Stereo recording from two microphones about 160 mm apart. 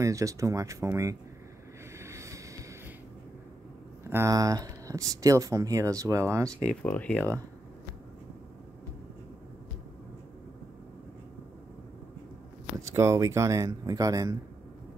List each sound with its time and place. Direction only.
0.0 s speech: 20° right (ahead or behind)
2.0 s a sound: 20° right (ahead or behind)
4.1 s speech: 20° right (ahead or behind)
6.6 s speech: 10° left (ahead or behind)
12.8 s speech: 15° right (ahead or behind)